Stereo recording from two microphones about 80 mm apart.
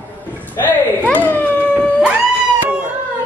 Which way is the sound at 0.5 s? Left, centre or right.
Left.